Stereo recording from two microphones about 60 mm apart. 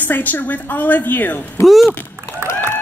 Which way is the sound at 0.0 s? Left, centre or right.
Left.